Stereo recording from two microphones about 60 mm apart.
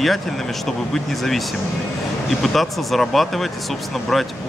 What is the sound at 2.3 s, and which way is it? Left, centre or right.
Speech, centre.